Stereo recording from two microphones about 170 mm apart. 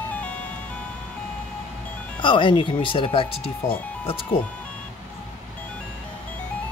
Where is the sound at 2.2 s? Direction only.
30° left (ahead or behind).